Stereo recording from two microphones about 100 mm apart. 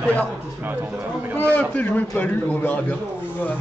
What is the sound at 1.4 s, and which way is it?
Speech, 15° left (ahead or behind).